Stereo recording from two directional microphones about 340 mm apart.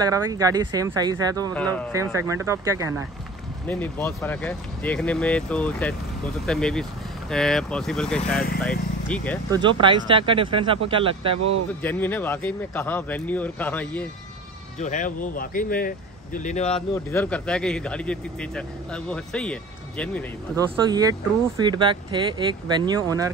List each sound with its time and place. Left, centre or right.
0.0 s speech: centre
1.5 s a man's voice: centre
1.9 s speech: centre
3.6 s a man's voice: centre
9.5 s speech: centre
11.3 s speech: right
11.8 s a man's voice: centre
14.8 s speech: left
16.6 s a man's voice: centre
20.5 s speech: centre